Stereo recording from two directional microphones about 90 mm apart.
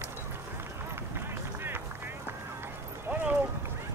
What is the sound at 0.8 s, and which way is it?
Run, 25° right (ahead or behind).